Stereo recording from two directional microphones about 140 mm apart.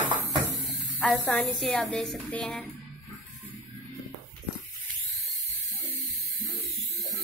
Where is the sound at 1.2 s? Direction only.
5° left (ahead or behind).